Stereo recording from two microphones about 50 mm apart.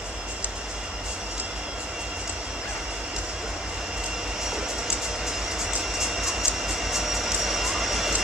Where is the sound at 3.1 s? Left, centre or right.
Centre.